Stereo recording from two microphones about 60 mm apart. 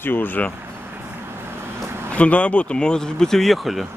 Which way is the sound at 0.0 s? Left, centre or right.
Left.